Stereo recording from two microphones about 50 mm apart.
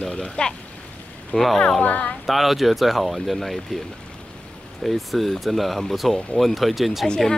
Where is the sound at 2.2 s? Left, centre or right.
Centre.